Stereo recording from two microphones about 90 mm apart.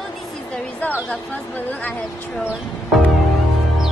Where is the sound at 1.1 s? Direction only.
20° left (ahead or behind).